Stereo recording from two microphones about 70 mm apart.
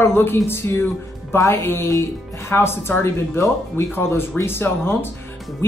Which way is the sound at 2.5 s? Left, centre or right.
Left.